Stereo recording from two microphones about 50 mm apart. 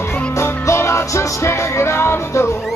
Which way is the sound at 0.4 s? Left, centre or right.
Left.